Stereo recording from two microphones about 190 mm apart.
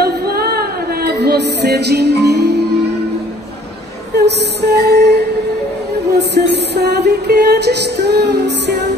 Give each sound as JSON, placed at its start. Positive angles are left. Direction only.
{"t": 0.0, "sound": "music", "side_deg": -55}
{"t": 4.2, "sound": "music", "side_deg": -60}